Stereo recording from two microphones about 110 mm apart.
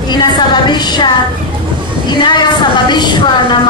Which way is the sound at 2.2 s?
45° left (ahead or behind).